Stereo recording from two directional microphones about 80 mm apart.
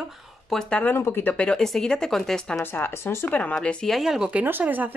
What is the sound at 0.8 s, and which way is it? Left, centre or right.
Speech, left.